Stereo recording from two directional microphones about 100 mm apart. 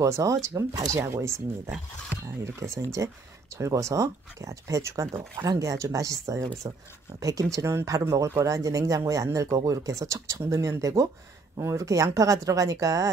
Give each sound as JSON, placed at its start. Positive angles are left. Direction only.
{"t": 0.0, "sound": "speech", "side_deg": -30}